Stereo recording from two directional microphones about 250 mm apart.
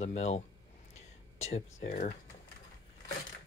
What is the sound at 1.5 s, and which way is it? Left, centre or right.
Speech, left.